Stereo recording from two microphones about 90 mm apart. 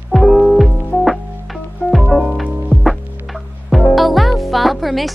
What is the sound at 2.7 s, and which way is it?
Music, 15° left (ahead or behind).